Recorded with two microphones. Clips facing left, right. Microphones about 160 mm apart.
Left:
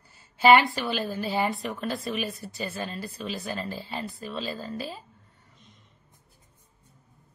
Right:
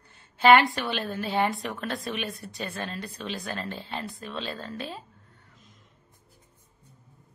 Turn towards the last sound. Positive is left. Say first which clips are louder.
# even
turn(degrees=0)  # may be behind; listen again after turning